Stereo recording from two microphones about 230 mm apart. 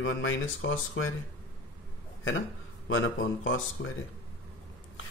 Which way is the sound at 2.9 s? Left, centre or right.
Left.